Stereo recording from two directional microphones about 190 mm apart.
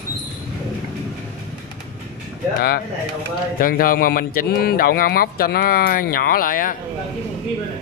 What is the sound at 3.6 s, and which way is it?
Speech, 50° left (ahead or behind).